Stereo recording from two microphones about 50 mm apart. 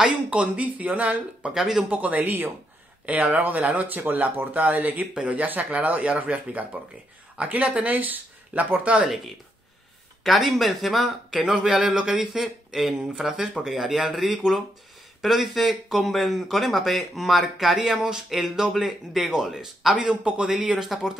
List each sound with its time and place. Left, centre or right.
0.0 s speech: right
1.5 s a man's voice: centre
1.9 s speech: right
3.1 s speech: right
10.2 s speech: centre
20.0 s a man's voice: centre